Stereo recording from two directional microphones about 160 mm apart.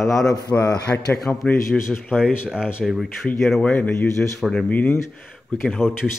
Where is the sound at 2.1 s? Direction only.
5° right (ahead or behind).